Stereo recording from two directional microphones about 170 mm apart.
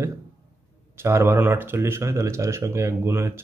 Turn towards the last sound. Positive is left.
turn(degrees=-15)  # may be behind; listen again after turning